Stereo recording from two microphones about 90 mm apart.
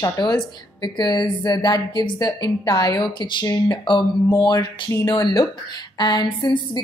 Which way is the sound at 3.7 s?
60° left (ahead or behind).